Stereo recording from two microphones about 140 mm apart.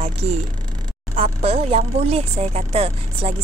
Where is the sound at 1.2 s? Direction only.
50° right (ahead or behind).